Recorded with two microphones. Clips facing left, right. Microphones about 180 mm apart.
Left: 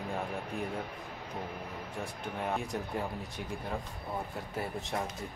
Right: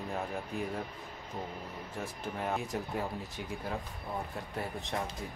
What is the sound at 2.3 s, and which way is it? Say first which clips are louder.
Speech: even; centre (ahead or behind).